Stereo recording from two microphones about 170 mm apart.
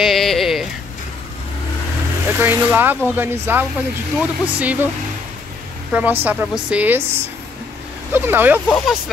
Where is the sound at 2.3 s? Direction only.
10° right (ahead or behind).